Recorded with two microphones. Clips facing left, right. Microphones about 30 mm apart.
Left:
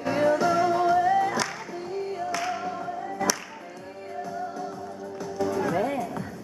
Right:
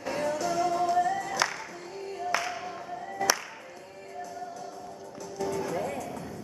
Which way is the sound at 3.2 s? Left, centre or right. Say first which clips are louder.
Even; centre.